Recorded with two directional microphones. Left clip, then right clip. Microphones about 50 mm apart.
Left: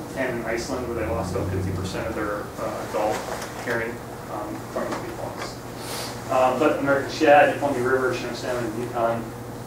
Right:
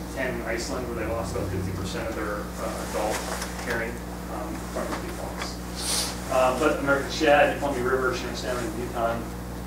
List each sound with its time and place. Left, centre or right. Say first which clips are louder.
2.9 s speech: left 3 dB; centre
6.3 s a man's voice: left 2 dB; centre